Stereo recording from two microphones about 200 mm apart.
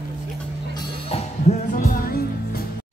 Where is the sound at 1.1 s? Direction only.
40° left (ahead or behind).